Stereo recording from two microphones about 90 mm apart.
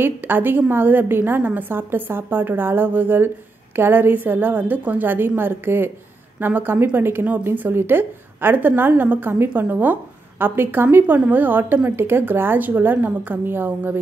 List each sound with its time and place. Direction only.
0.0 s a woman's voice: 20° right (ahead or behind)